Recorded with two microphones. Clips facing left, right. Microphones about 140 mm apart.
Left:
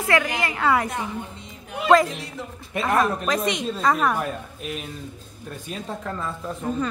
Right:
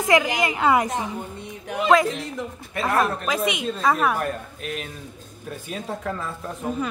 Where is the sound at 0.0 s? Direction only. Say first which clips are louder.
Right 3 dB; 20° right (ahead or behind).